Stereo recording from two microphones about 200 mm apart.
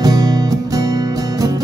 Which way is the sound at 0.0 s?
20° right (ahead or behind).